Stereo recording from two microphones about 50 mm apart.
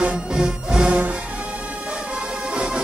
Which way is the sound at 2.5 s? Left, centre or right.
Centre.